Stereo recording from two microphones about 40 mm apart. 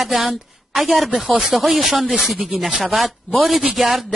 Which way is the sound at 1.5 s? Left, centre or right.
Centre.